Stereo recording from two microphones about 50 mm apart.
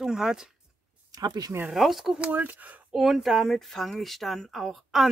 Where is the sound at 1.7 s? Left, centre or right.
Centre.